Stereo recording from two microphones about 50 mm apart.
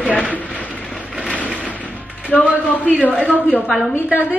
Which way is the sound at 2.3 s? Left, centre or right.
Left.